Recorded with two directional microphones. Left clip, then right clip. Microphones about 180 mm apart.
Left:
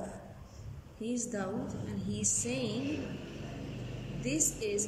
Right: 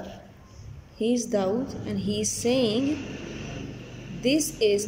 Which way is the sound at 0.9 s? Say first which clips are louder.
Right 12 dB; 25° right (ahead or behind).